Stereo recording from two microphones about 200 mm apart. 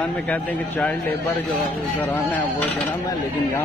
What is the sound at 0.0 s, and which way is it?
A man's voice, 5° left (ahead or behind).